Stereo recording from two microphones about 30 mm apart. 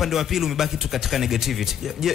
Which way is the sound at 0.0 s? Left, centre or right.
Centre.